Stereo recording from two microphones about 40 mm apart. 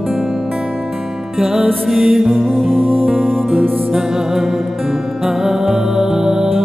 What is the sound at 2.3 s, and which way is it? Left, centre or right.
Music, centre.